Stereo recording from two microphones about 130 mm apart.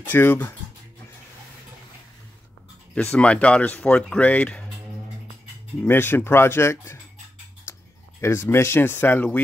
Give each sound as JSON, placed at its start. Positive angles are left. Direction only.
{"t": 0.0, "sound": "speech", "side_deg": 15}
{"t": 2.9, "sound": "speech", "side_deg": 10}
{"t": 5.8, "sound": "speech", "side_deg": 15}
{"t": 8.2, "sound": "speech", "side_deg": 20}